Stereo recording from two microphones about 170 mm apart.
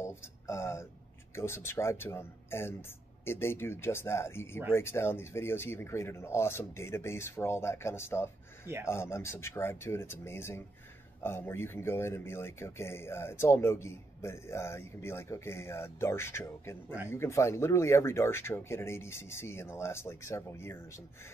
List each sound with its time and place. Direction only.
0.0 s speech: 15° left (ahead or behind)